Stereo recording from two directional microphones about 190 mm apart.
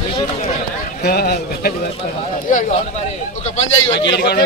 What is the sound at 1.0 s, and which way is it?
Speech, 55° left (ahead or behind).